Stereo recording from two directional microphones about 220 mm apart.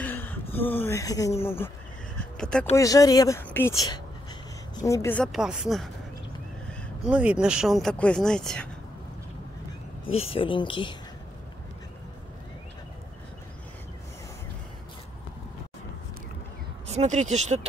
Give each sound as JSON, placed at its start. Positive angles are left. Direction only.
{"t": 0.0, "sound": "speech", "side_deg": 10}
{"t": 2.1, "sound": "a sound", "side_deg": 5}
{"t": 2.7, "sound": "a woman's voice", "side_deg": 15}
{"t": 7.1, "sound": "speech", "side_deg": -5}
{"t": 10.3, "sound": "speech", "side_deg": 25}
{"t": 16.8, "sound": "speech", "side_deg": -30}